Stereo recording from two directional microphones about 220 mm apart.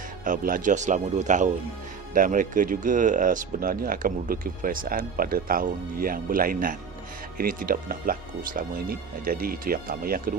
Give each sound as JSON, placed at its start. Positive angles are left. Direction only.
{"t": 0.2, "sound": "speech", "side_deg": -40}